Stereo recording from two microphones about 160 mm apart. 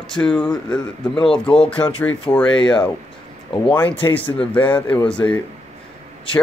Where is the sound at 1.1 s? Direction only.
35° left (ahead or behind).